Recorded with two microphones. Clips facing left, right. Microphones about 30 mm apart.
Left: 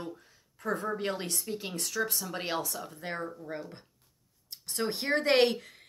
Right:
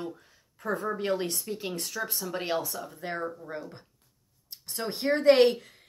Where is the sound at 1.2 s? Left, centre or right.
Centre.